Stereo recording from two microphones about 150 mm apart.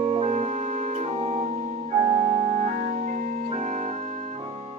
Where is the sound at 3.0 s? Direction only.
55° right (ahead or behind).